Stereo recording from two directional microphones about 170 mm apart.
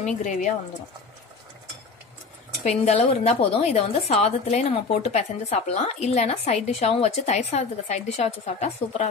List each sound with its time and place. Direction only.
0.0 s speech: 50° left (ahead or behind)
2.6 s a woman's voice: 40° left (ahead or behind)